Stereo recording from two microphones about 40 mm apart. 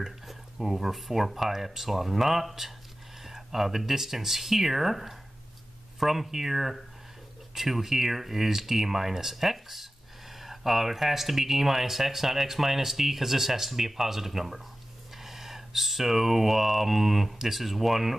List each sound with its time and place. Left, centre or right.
0.0 s speech: centre